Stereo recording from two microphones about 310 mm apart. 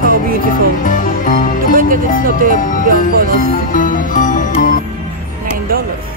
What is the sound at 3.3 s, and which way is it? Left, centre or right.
Music, left.